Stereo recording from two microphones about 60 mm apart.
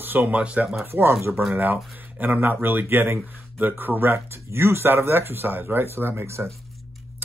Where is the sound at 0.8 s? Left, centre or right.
Right.